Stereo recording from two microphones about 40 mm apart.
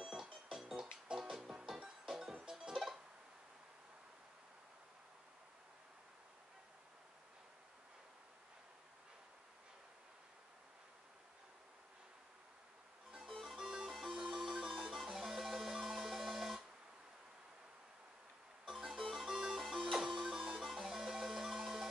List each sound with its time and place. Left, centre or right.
0.0 s music: centre
2.7 s music: centre
13.3 s music: centre
18.7 s music: centre